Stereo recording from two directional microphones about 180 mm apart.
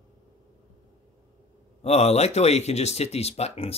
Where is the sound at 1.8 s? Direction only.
35° left (ahead or behind).